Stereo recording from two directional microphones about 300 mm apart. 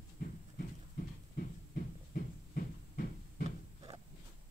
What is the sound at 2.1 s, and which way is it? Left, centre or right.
Heart murmur, left.